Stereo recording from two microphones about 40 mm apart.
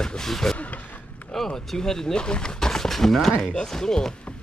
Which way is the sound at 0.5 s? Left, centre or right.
Left.